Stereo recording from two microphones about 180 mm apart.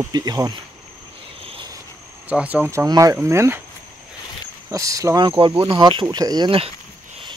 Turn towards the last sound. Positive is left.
turn(degrees=-30)  # may be behind; listen again after turning